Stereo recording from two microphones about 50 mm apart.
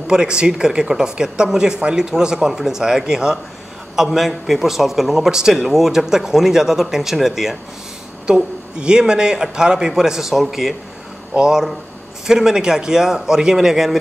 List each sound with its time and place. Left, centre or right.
0.1 s a man's voice: centre
8.3 s a woman's voice: centre